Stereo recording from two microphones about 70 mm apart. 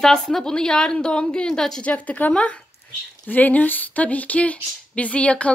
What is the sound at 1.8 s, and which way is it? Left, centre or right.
Speech, centre.